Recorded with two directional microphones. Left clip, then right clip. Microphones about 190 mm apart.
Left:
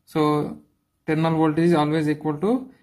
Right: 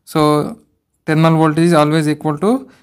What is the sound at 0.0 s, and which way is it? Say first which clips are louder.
Speech: right 8 dB; 55° right (ahead or behind).